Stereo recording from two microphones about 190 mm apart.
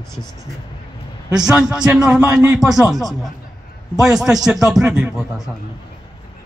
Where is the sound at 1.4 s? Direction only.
5° right (ahead or behind).